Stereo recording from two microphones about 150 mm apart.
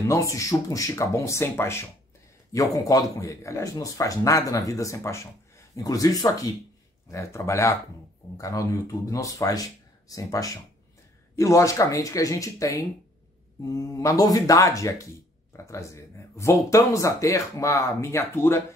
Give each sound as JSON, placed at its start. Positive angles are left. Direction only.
{"t": 0.1, "sound": "speech", "side_deg": 20}